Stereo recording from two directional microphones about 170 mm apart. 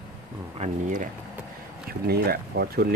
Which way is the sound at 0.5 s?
45° right (ahead or behind).